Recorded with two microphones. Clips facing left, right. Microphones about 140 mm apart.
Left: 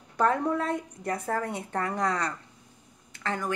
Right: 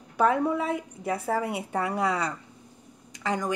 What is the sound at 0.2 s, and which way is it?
A woman's voice, 5° right (ahead or behind).